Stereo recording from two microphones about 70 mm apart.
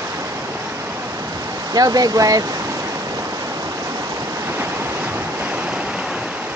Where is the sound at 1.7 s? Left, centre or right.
Right.